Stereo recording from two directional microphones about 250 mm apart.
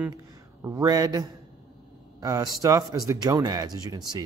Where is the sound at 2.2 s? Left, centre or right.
Centre.